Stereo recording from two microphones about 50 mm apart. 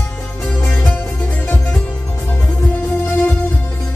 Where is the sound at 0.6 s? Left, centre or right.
Left.